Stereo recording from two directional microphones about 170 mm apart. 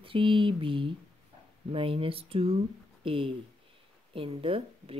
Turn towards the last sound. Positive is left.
turn(degrees=-30)  # may be behind; listen again after turning